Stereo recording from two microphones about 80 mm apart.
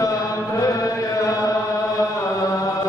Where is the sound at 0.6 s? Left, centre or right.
Left.